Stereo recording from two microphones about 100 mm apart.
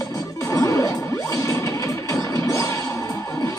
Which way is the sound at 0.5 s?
30° left (ahead or behind).